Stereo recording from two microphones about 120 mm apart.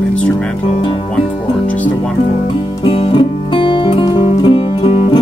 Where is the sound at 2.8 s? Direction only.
45° left (ahead or behind).